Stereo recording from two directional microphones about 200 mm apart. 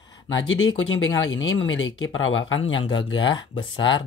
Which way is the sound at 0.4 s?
75° left (ahead or behind).